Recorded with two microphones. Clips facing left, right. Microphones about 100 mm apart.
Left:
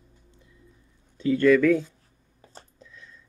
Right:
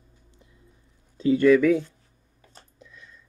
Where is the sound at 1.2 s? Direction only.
15° right (ahead or behind).